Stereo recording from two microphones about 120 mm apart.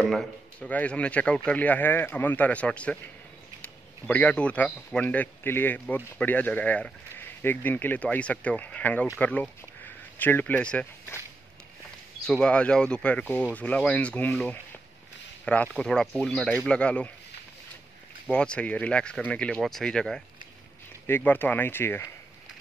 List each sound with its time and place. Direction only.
0.0 s speech: 5° left (ahead or behind)
4.1 s speech: 10° left (ahead or behind)
12.2 s speech: 5° left (ahead or behind)
18.2 s speech: 10° left (ahead or behind)
21.1 s speech: 15° left (ahead or behind)